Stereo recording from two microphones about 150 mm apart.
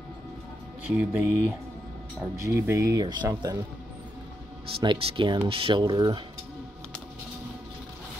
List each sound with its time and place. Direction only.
0.8 s music: 10° right (ahead or behind)
2.3 s speech: 20° right (ahead or behind)
4.7 s speech: 40° right (ahead or behind)